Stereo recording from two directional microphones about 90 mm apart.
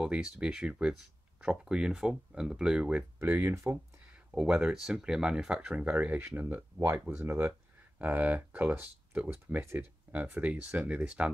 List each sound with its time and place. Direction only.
0.0 s speech: 10° right (ahead or behind)
3.2 s speech: 25° right (ahead or behind)
4.3 s speech: 10° right (ahead or behind)